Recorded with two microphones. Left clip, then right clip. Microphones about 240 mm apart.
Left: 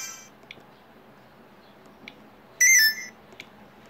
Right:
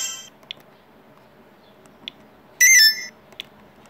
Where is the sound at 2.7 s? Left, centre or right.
Centre.